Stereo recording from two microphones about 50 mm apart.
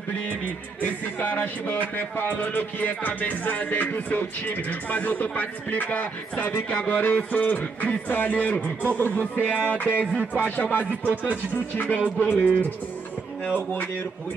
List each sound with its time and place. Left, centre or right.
0.7 s music: left
9.8 s music: right
10.3 s music: left